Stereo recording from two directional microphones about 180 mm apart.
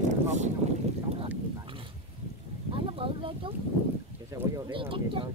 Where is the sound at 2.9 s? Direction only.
30° right (ahead or behind).